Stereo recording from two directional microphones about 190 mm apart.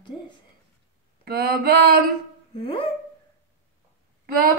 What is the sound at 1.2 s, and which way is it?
Mantra, 55° right (ahead or behind).